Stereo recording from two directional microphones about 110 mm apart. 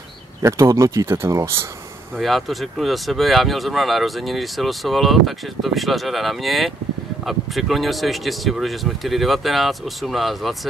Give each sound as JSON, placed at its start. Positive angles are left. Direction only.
{"t": 0.4, "sound": "speech", "side_deg": -25}
{"t": 2.1, "sound": "speech", "side_deg": 0}